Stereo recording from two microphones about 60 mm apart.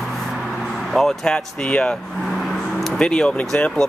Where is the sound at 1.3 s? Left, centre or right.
Centre.